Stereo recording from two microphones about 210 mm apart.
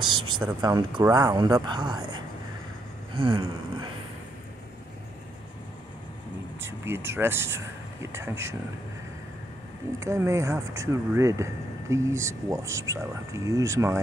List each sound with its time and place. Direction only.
0.0 s a sound: 20° right (ahead or behind)
0.6 s speech: 20° right (ahead or behind)
6.6 s speech: 10° right (ahead or behind)
9.9 s speech: 15° right (ahead or behind)